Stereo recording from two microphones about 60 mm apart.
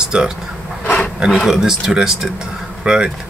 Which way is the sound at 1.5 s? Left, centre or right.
Centre.